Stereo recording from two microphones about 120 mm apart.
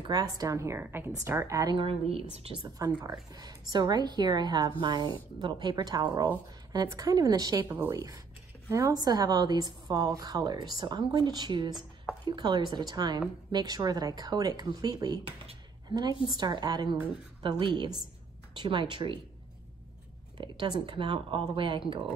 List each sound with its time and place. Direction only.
0.0 s a woman's voice: 30° right (ahead or behind)
1.8 s a woman's voice: 55° right (ahead or behind)
2.6 s a woman's voice: 30° right (ahead or behind)
7.6 s a woman's voice: 15° right (ahead or behind)
7.9 s a woman's voice: 25° right (ahead or behind)
20.3 s a woman's voice: 40° right (ahead or behind)